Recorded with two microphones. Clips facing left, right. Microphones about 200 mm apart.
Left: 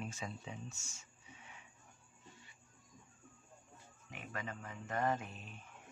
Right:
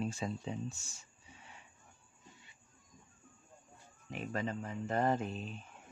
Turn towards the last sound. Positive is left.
turn(degrees=-30)  # may be behind; listen again after turning